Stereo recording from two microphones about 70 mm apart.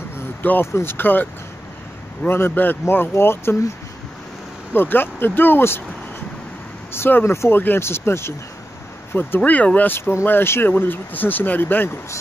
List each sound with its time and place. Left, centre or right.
0.4 s speech: left
2.2 s speech: left
4.7 s speech: left
6.9 s speech: left
9.4 s speech: centre
9.9 s speech: left